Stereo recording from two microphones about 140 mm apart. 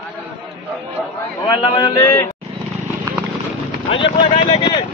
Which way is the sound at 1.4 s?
35° left (ahead or behind).